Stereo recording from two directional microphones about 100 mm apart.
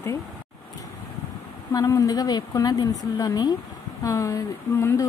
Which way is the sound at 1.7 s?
35° left (ahead or behind).